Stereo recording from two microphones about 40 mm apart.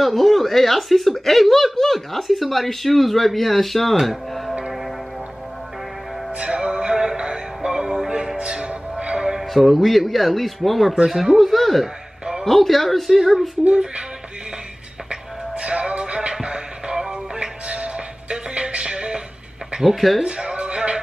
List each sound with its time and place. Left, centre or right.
0.0 s speech: centre
4.0 s music: centre
6.3 s music: right
9.5 s speech: centre
11.4 s speech: centre
15.0 s music: right
19.8 s speech: centre
20.2 s music: right